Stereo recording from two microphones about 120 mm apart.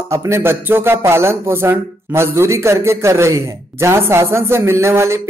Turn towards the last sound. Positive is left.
turn(degrees=-20)  # may be behind; listen again after turning